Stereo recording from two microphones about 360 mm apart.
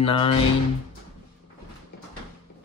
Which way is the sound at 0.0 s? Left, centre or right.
Centre.